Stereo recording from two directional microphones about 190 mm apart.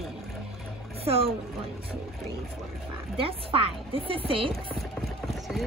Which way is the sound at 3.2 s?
30° right (ahead or behind).